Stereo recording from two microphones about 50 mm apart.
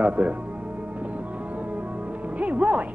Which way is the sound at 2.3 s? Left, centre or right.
Right.